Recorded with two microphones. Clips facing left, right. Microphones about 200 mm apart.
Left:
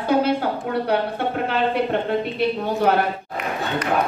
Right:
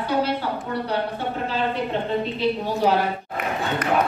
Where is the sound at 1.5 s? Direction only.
60° left (ahead or behind).